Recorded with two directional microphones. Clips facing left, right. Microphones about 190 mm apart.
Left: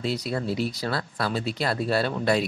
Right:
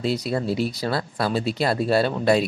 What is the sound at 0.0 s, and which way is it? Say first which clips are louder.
Speech: right 4 dB; 25° right (ahead or behind).